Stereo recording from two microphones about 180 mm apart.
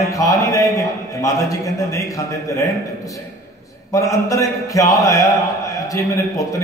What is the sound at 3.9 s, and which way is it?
A man's voice, 20° left (ahead or behind).